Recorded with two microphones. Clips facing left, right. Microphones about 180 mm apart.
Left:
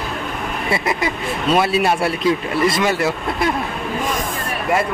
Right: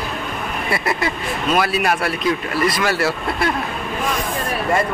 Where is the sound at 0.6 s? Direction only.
20° left (ahead or behind).